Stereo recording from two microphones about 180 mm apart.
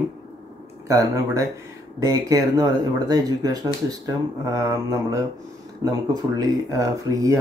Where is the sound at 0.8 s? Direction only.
20° right (ahead or behind).